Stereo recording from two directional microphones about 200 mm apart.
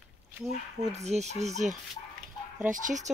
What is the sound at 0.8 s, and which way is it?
Speech, 35° right (ahead or behind).